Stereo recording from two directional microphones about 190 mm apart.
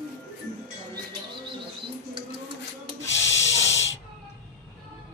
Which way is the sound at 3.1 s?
75° left (ahead or behind).